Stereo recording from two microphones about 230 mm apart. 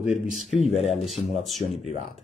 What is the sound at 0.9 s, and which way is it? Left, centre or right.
Speech, centre.